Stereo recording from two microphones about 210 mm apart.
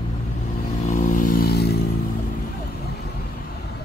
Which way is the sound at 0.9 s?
50° left (ahead or behind).